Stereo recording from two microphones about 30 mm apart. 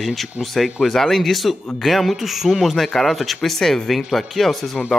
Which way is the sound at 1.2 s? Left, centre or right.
Centre.